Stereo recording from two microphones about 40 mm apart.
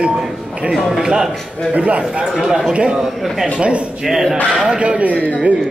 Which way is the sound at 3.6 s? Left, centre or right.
Right.